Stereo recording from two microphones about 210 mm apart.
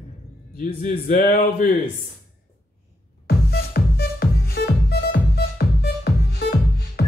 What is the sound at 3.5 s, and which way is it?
Music, 50° left (ahead or behind).